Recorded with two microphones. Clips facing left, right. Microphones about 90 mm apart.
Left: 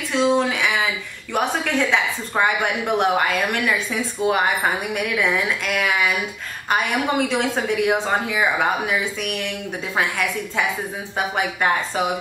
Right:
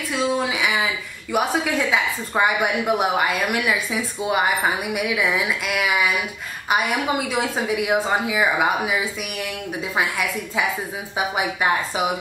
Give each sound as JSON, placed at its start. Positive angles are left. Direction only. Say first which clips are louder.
{"t": 0.1, "sound": "a woman's voice", "louder": "left 4 dB", "side_deg": -5}